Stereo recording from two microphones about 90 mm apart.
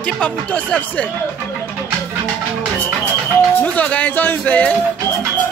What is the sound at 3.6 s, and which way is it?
Speech, 15° left (ahead or behind).